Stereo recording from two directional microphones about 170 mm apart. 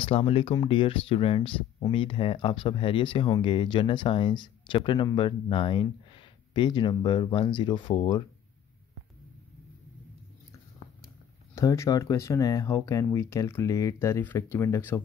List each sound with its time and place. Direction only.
0.0 s speech: 30° left (ahead or behind)
11.5 s speech: 15° left (ahead or behind)